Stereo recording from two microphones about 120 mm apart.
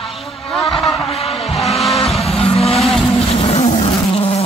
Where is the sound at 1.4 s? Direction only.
Centre (ahead or behind).